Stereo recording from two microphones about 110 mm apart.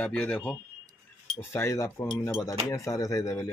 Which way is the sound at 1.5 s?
25° left (ahead or behind).